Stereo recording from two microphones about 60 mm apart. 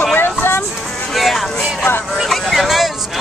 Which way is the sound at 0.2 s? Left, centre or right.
Left.